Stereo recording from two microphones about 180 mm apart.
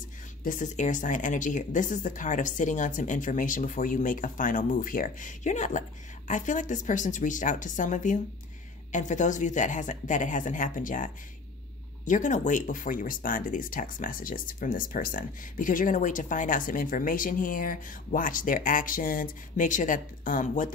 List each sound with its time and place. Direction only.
0.4 s speech: 45° left (ahead or behind)